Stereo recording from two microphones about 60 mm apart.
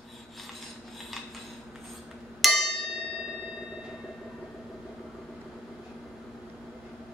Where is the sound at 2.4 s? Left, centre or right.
Centre.